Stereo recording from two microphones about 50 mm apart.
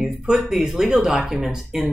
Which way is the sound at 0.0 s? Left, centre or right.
Centre.